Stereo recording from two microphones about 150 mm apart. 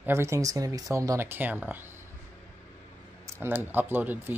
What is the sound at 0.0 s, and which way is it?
Speech, 15° right (ahead or behind).